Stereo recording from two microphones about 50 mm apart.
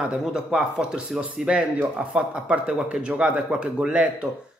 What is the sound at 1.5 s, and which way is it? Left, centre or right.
Speech, right.